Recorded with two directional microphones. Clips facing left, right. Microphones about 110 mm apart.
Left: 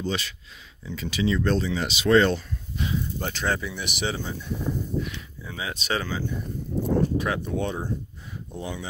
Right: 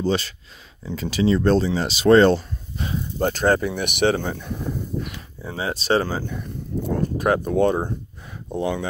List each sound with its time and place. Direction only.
0.0 s speech: 35° right (ahead or behind); by 4.6 s 60° right (ahead or behind)
5.0 s speech: 40° right (ahead or behind)
8.5 s speech: 65° right (ahead or behind)